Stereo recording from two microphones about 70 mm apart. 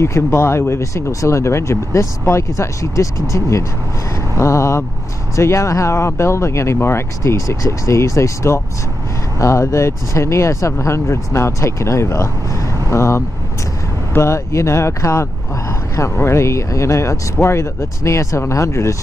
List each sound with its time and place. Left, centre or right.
0.0 s speech: left